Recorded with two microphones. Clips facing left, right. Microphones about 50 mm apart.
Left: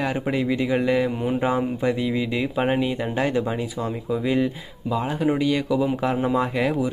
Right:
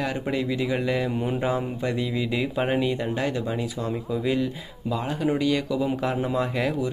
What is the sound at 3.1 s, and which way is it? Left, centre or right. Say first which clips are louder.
Speech: left 4 dB; left.